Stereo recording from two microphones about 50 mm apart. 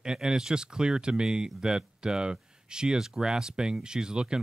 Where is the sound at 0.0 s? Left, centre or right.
Centre.